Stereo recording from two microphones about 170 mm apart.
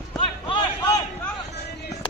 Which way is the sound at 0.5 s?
25° left (ahead or behind).